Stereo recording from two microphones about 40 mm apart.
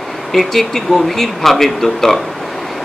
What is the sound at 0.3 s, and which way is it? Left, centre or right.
Speech, centre.